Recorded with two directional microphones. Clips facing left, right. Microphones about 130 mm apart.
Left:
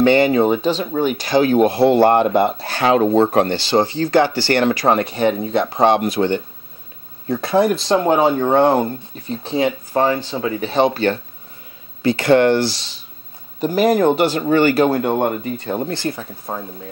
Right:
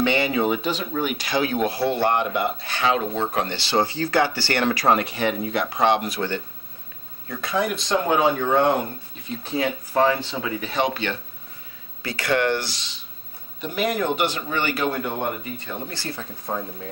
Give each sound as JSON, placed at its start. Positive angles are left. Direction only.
{"t": 0.0, "sound": "speech", "side_deg": 45}
{"t": 3.8, "sound": "speech", "side_deg": 25}
{"t": 4.4, "sound": "speech", "side_deg": 40}
{"t": 4.6, "sound": "speech", "side_deg": 25}
{"t": 6.0, "sound": "speech", "side_deg": 20}
{"t": 7.2, "sound": "speech", "side_deg": 30}
{"t": 12.0, "sound": "speech", "side_deg": 25}
{"t": 15.9, "sound": "speech", "side_deg": 20}